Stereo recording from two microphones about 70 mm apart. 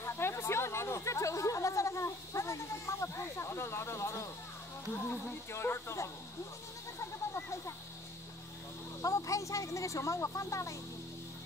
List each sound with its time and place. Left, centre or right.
0.0 s speech: left
4.9 s speech: left
9.0 s speech: left